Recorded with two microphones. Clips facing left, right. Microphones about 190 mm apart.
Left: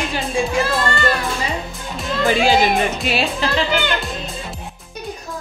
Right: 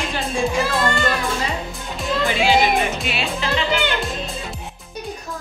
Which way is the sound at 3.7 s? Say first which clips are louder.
Left 1 dB; centre (ahead or behind).